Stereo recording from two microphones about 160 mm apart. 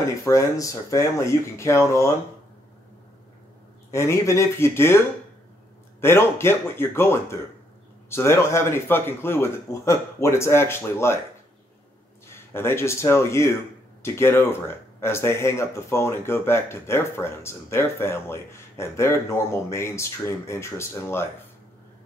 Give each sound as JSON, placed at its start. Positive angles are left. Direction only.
{"t": 0.2, "sound": "speech", "side_deg": 20}
{"t": 3.9, "sound": "speech", "side_deg": 15}
{"t": 12.3, "sound": "a man's voice", "side_deg": 15}